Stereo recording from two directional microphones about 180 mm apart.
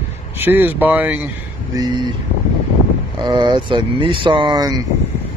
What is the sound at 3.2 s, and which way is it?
Speech, 25° right (ahead or behind).